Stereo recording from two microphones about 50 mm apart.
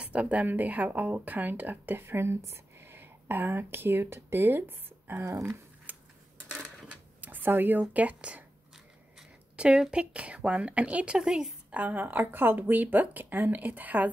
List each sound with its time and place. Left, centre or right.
0.0 s speech: right
2.9 s speech: right
5.2 s speech: right
5.9 s a sound: right
7.9 s speech: right
9.6 s a woman's voice: centre
11.7 s speech: right